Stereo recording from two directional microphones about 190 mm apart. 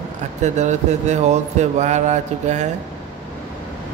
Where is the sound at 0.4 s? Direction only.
40° right (ahead or behind).